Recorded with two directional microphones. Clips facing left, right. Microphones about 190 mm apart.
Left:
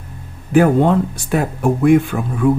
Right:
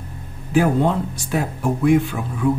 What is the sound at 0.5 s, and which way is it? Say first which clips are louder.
Speech: left 5 dB; 55° left (ahead or behind).